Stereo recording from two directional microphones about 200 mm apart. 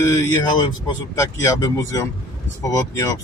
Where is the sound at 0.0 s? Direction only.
15° left (ahead or behind).